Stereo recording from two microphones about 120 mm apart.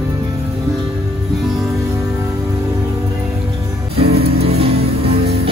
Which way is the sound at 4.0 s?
60° right (ahead or behind).